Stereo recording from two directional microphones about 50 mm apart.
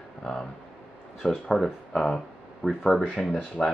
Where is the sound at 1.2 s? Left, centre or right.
Centre.